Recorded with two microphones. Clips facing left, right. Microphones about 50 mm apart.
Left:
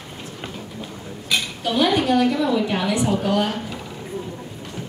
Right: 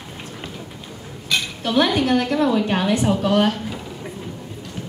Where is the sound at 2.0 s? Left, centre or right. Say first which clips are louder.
Even; right.